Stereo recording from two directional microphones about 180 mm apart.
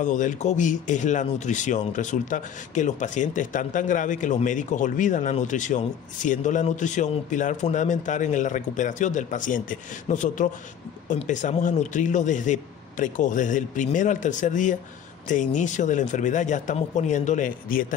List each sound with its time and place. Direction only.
0.0 s speech: 45° left (ahead or behind)